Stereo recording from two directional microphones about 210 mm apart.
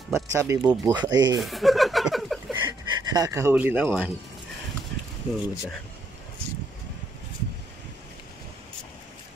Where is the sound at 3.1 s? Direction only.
15° right (ahead or behind).